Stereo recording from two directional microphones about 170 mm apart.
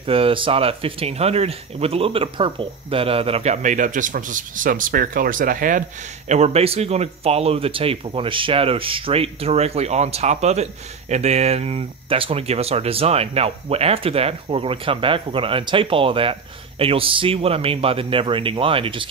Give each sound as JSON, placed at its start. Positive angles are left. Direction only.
{"t": 0.0, "sound": "speech", "side_deg": -35}